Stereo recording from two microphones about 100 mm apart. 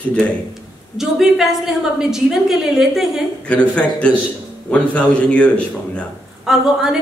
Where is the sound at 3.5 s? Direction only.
10° left (ahead or behind).